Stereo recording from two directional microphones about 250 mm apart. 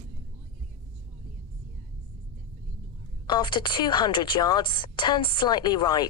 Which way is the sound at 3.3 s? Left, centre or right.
Centre.